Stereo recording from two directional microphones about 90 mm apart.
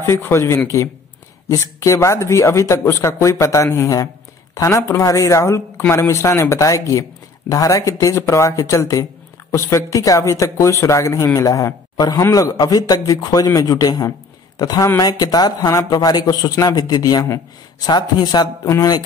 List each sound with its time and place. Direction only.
0.0 s a man's voice: 25° left (ahead or behind); by 19.0 s 45° left (ahead or behind)